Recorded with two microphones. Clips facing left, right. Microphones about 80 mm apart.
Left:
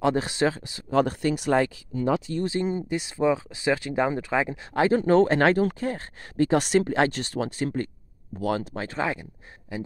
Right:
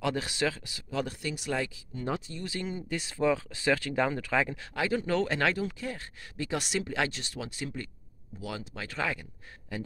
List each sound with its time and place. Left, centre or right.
0.0 s speech: left
0.8 s speech: left
2.4 s speech: left
4.7 s speech: left
8.7 s speech: left